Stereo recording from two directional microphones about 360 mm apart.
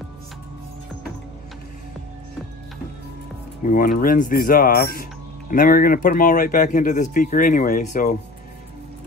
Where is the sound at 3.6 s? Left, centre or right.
Left.